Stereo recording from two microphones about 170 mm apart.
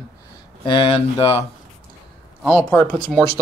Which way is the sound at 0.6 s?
30° left (ahead or behind).